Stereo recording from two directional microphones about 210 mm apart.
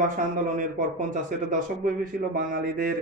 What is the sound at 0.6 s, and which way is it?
Speech, 35° right (ahead or behind).